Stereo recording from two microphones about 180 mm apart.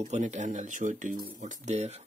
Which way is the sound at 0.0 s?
40° right (ahead or behind).